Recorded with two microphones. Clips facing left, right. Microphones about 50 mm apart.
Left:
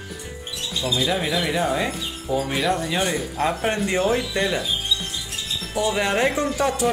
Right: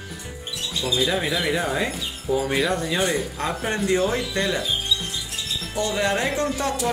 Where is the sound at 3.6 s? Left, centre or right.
Left.